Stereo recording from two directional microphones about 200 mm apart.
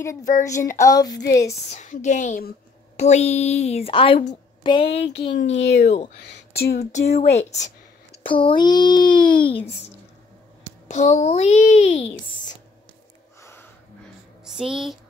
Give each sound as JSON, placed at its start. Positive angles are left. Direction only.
{"t": 0.0, "sound": "a sound", "side_deg": 15}
{"t": 1.7, "sound": "a woman's voice", "side_deg": 35}
{"t": 6.2, "sound": "speech", "side_deg": 55}
{"t": 6.9, "sound": "a woman's voice", "side_deg": 35}
{"t": 10.9, "sound": "a woman's voice", "side_deg": 35}
{"t": 13.4, "sound": "a sound", "side_deg": 15}
{"t": 14.4, "sound": "speech", "side_deg": -5}